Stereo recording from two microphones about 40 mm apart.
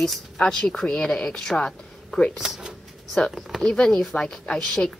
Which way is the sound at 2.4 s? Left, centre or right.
Centre.